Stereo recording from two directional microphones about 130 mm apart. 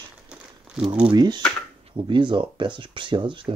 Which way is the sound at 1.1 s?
30° right (ahead or behind).